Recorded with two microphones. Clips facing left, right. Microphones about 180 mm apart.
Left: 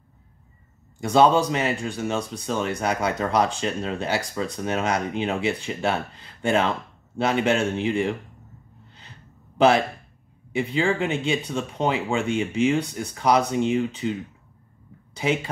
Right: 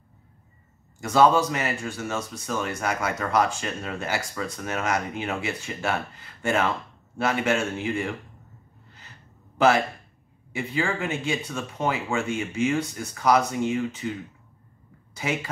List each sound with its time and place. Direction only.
1.0 s speech: 25° left (ahead or behind)
2.1 s speech: 30° left (ahead or behind)
9.6 s speech: 25° left (ahead or behind)
15.1 s speech: 20° left (ahead or behind)